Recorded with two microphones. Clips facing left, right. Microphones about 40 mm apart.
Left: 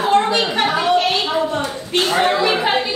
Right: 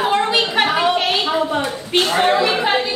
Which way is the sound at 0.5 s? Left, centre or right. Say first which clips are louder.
Even; centre.